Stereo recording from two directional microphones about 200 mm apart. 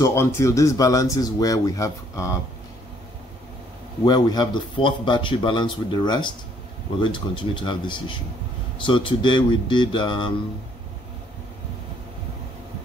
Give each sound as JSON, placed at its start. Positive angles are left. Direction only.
{"t": 0.0, "sound": "speech", "side_deg": 15}
{"t": 4.0, "sound": "a man's voice", "side_deg": 20}